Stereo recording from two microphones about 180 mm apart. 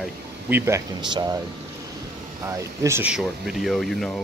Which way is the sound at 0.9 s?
25° right (ahead or behind).